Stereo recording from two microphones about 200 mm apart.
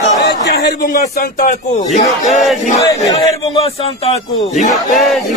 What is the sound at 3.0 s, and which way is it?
Speech, 15° left (ahead or behind).